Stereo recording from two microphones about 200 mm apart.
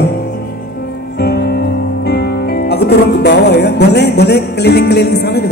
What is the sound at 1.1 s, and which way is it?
Speech, 55° left (ahead or behind).